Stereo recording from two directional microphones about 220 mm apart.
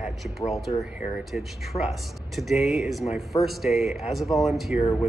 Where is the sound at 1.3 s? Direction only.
Centre (ahead or behind).